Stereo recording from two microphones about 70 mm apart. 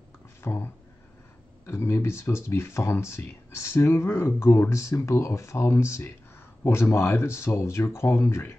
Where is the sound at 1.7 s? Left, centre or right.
Left.